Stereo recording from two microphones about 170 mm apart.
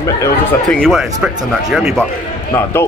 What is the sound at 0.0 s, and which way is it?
Speech, 15° left (ahead or behind).